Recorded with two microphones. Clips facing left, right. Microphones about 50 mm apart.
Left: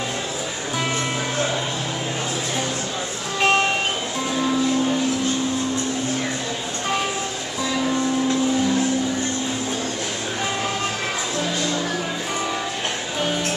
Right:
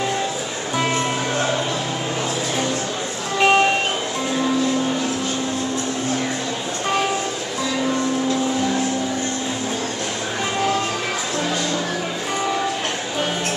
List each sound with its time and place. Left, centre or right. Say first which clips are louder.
3.3 s music: right 3 dB; centre